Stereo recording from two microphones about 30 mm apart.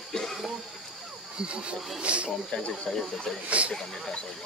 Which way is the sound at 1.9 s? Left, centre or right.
Right.